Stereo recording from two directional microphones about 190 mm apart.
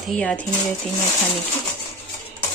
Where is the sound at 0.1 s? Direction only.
5° left (ahead or behind).